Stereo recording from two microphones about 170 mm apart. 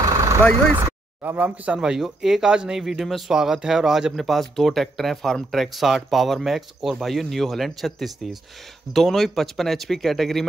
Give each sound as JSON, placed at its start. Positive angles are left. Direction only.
{"t": 0.0, "sound": "vehicle", "side_deg": -20}
{"t": 0.8, "sound": "speech", "side_deg": -10}